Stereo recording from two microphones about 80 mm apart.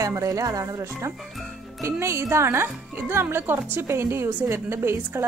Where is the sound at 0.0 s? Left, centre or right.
Right.